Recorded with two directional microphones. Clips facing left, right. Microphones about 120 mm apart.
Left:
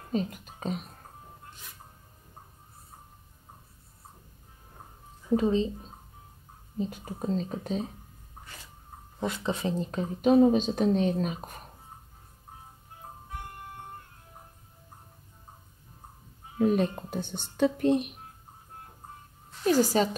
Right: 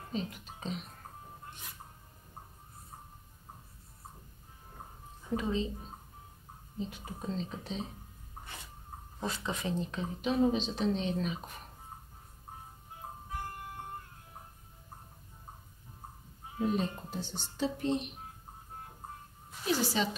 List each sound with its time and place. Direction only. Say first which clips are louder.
0.1 s speech: left 7 dB; 45° left (ahead or behind)
5.3 s a woman's voice: left 8 dB; 35° left (ahead or behind)
6.8 s speech: left 7 dB; 45° left (ahead or behind)
9.4 s speech: left 5 dB; 30° left (ahead or behind)
16.5 s speech: left 7 dB; 60° left (ahead or behind)
19.6 s speech: left 8 dB; 45° left (ahead or behind)